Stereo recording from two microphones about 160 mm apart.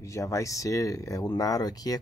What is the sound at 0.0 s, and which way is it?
Speech, 20° left (ahead or behind).